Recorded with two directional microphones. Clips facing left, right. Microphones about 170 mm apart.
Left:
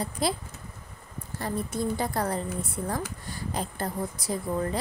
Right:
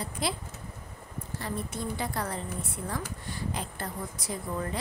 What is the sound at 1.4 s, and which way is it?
A woman's voice, 40° left (ahead or behind).